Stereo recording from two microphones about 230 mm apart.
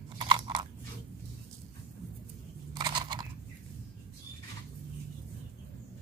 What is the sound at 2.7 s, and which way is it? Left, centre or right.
Crunch, centre.